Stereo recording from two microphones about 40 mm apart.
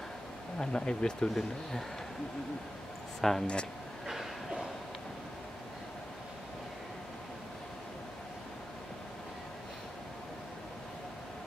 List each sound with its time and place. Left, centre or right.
0.6 s speech: left
1.3 s speech: centre
3.2 s speech: centre
4.1 s a sound: centre